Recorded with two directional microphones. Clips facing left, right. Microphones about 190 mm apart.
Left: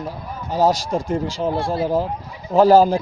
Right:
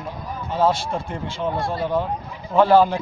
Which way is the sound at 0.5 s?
40° left (ahead or behind).